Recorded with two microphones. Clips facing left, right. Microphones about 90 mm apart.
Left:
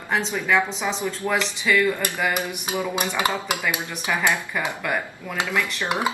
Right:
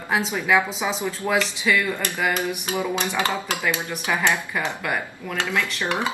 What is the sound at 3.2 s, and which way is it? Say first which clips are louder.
Speech: left 2 dB; 15° left (ahead or behind).